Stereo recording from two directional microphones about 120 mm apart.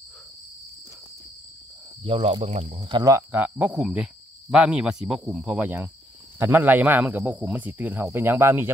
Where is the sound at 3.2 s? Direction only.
15° right (ahead or behind).